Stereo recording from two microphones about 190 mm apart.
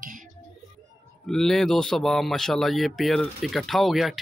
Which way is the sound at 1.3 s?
Centre (ahead or behind).